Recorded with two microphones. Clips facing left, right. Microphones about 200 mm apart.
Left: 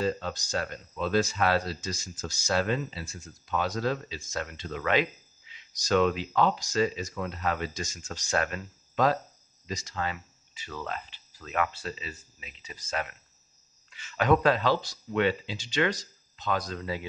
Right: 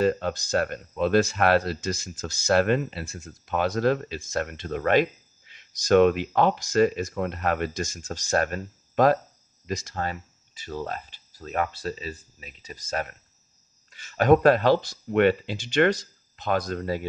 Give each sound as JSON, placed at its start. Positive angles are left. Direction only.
{"t": 0.0, "sound": "speech", "side_deg": -60}